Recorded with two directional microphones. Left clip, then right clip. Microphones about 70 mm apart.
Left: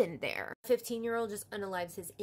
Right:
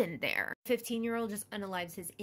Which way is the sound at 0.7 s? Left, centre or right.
Centre.